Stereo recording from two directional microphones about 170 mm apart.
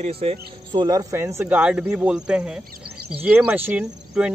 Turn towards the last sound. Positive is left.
turn(degrees=-5)  # may be behind; listen again after turning